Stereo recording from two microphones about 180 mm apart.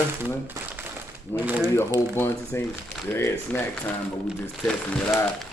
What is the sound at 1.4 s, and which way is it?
Speech, 10° right (ahead or behind).